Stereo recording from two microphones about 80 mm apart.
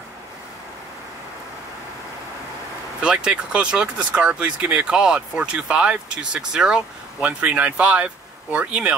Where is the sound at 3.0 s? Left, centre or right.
Centre.